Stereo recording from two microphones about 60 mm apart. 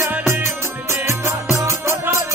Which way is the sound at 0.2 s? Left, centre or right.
Right.